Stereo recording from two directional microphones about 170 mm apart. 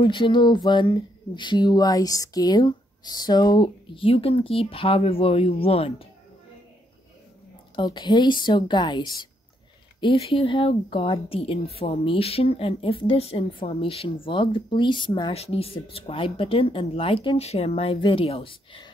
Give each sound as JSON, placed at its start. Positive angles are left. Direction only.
{"t": 0.0, "sound": "speech", "side_deg": 30}
{"t": 7.7, "sound": "speech", "side_deg": 25}